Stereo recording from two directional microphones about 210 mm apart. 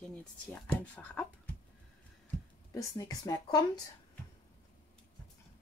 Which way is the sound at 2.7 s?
15° left (ahead or behind).